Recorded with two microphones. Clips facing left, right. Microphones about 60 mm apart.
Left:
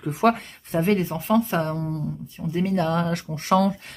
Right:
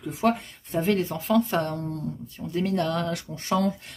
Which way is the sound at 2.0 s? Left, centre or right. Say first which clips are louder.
Left 3 dB; centre.